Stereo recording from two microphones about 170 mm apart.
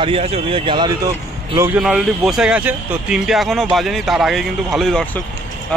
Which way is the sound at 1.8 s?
Centre (ahead or behind).